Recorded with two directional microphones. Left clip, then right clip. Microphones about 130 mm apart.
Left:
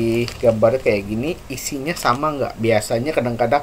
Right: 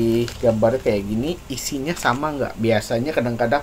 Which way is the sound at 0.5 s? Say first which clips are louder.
Left 3 dB; 5° right (ahead or behind).